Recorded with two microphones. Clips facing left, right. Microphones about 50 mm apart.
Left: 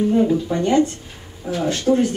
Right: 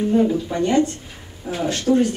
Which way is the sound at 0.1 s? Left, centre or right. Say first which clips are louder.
Right 2 dB; centre.